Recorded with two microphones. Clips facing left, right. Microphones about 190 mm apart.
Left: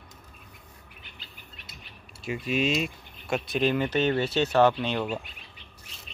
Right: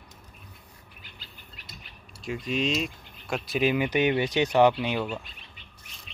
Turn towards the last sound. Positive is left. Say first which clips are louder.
# right 1 dB
turn(degrees=-10)  # may be behind; listen again after turning